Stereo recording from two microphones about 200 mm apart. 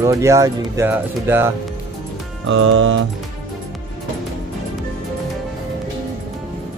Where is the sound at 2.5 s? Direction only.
75° right (ahead or behind).